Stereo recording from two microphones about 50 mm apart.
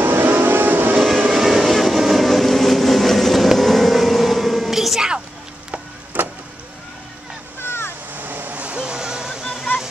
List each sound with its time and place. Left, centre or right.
0.0 s music: right
1.3 s vehicle: centre
6.1 s vehicle: right
7.6 s waves: left
8.1 s waves: right; by 9.4 s centre